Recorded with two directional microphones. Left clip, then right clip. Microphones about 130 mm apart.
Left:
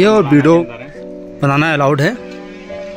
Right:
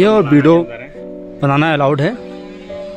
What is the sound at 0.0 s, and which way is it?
Speech, centre (ahead or behind).